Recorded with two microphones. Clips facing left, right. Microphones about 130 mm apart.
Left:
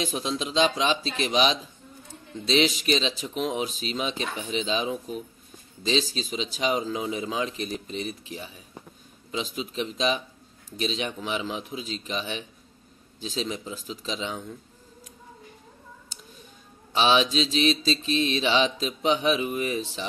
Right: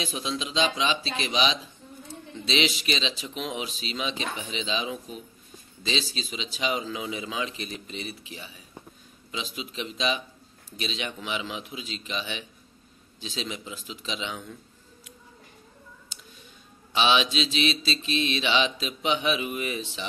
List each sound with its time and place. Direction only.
0.0 s speech: 45° left (ahead or behind)
5.9 s mantra: 40° left (ahead or behind)
16.9 s mantra: 40° left (ahead or behind)